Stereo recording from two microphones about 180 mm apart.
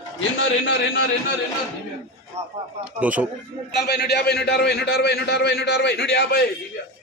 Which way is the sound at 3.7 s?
65° left (ahead or behind).